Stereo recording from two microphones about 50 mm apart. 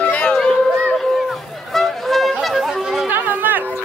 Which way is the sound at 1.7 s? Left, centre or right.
Centre.